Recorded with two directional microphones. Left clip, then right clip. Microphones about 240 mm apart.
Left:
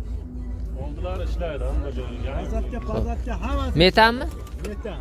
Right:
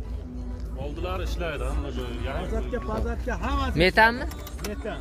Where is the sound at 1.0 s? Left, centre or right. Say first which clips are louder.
Left 1 dB; right.